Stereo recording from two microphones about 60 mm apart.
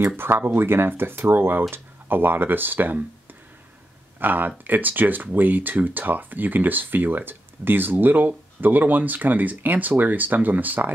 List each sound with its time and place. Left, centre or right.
0.5 s speech: right
4.2 s speech: right